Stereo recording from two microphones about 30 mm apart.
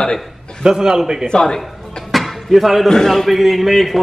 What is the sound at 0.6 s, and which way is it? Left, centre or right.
Speech, right.